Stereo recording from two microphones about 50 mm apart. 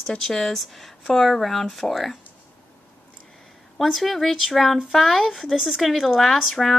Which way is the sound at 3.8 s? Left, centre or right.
Centre.